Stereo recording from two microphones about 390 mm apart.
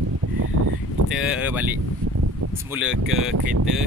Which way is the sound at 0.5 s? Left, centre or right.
Right.